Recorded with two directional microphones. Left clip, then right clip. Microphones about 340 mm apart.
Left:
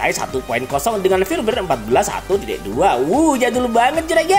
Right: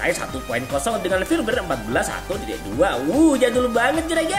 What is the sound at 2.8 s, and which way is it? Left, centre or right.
Speech, centre.